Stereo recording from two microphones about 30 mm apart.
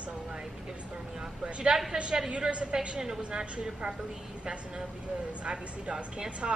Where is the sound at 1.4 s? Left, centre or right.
Right.